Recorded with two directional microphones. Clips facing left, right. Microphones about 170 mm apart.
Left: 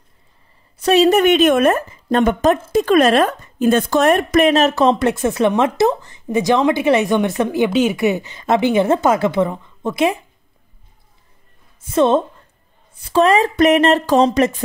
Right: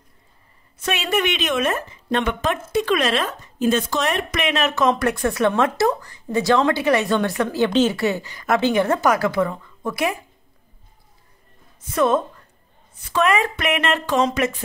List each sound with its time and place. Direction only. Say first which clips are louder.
0.8 s a woman's voice: left 10 dB; 35° left (ahead or behind)
11.9 s a woman's voice: left 4 dB; 25° left (ahead or behind)